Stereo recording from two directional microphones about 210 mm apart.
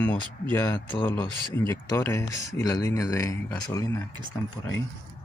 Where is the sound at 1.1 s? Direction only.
20° left (ahead or behind).